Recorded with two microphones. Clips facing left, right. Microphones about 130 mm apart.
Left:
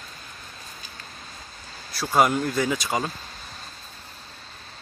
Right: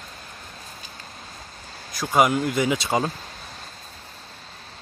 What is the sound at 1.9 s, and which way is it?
Speech, 10° right (ahead or behind).